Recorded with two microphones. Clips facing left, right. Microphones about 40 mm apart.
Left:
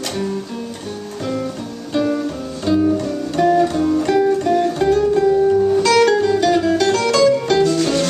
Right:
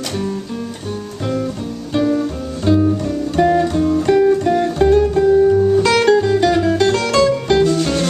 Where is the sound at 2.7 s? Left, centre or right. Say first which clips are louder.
Right 2 dB; right.